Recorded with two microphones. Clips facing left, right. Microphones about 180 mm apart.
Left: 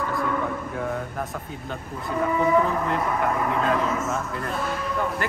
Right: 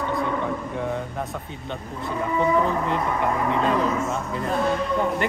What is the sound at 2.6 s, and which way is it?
Speech, centre (ahead or behind).